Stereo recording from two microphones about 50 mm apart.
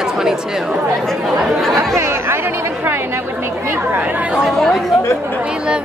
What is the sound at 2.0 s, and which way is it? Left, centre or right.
Speech, right.